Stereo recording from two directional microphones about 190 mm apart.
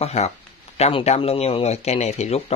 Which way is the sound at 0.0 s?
35° left (ahead or behind).